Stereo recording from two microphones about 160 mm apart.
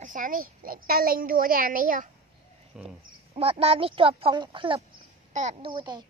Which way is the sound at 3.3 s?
35° right (ahead or behind).